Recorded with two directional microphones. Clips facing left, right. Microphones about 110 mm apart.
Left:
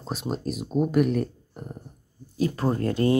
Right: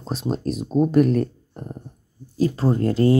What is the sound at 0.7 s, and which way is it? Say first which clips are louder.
Speech: right 5 dB; 35° right (ahead or behind).